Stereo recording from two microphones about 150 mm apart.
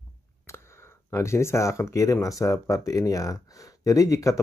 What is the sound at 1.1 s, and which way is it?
Speech, 20° left (ahead or behind).